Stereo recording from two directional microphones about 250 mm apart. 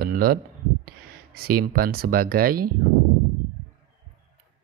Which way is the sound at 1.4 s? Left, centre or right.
Right.